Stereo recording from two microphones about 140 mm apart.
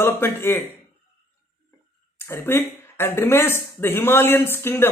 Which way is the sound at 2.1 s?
15° left (ahead or behind).